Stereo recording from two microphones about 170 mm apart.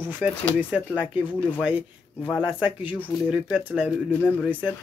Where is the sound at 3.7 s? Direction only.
10° right (ahead or behind).